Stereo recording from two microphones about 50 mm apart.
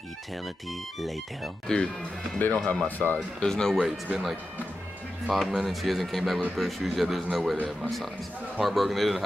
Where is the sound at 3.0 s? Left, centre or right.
Left.